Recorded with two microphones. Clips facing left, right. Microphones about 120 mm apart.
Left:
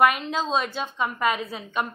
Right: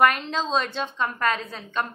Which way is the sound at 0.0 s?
5° left (ahead or behind).